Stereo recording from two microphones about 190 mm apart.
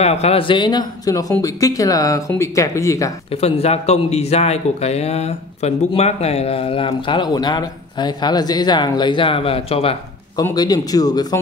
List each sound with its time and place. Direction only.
0.0 s speech: 35° left (ahead or behind); by 3.1 s 15° left (ahead or behind)
3.3 s speech: 30° left (ahead or behind)
10.3 s speech: 20° left (ahead or behind)